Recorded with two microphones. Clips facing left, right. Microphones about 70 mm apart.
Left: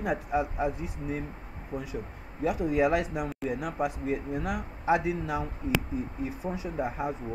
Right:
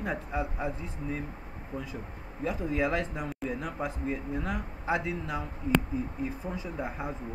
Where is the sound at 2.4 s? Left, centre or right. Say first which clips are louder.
Left 4 dB; centre.